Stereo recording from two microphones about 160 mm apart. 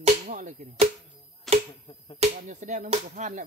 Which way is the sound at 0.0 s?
50° right (ahead or behind).